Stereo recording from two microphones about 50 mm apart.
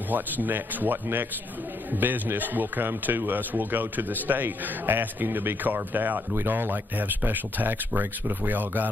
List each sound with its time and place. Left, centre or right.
0.1 s speech: right